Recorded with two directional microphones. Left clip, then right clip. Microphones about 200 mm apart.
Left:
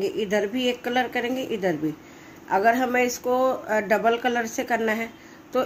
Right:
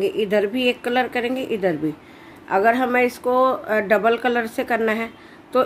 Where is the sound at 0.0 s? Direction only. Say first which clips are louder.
Right 5 dB; 5° right (ahead or behind).